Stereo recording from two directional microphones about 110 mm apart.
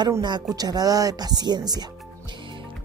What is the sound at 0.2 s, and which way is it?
Speech, 40° right (ahead or behind).